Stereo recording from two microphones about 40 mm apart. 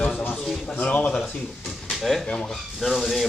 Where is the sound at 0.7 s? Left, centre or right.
Left.